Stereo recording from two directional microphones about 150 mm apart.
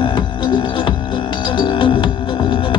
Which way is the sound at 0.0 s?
30° left (ahead or behind).